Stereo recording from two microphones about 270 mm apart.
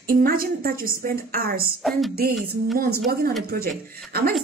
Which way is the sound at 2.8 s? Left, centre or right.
Right.